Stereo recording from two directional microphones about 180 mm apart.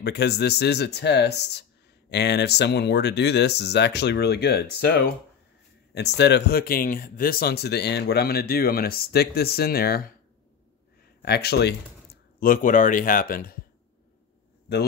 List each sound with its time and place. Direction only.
0.0 s speech: 65° left (ahead or behind)
5.9 s speech: 70° left (ahead or behind)
11.2 s speech: 65° left (ahead or behind)
12.4 s speech: 50° left (ahead or behind)